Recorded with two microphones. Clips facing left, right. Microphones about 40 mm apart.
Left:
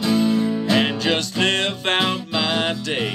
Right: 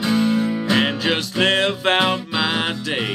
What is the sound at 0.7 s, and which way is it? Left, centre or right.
Music, centre.